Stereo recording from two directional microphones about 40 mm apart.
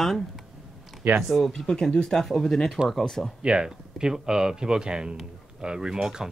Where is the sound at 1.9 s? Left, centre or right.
Centre.